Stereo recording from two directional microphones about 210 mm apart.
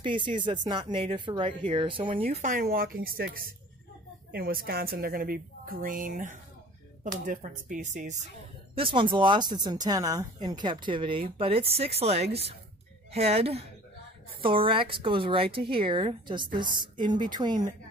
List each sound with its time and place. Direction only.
0.0 s a woman's voice: 25° right (ahead or behind)
8.7 s speech: 25° right (ahead or behind)